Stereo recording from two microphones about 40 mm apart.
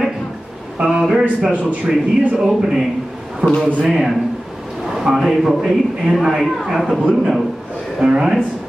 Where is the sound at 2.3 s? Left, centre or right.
Centre.